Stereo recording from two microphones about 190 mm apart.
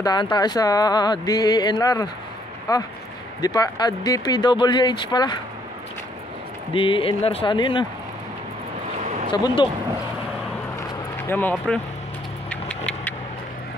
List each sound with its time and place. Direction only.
0.0 s speech: 25° left (ahead or behind)
6.7 s speech: 25° left (ahead or behind)
9.3 s speech: 25° left (ahead or behind)
10.8 s vehicle: 10° left (ahead or behind)